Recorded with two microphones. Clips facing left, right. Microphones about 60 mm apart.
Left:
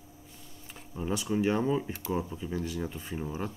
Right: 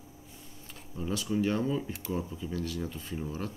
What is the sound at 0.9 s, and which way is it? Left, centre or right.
Speech, centre.